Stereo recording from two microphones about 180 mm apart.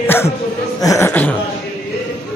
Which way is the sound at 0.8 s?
15° left (ahead or behind).